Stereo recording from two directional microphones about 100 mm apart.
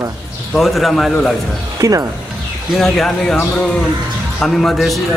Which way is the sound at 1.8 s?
35° right (ahead or behind).